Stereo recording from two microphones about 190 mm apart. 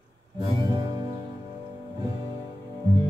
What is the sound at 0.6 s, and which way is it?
Music, 20° right (ahead or behind).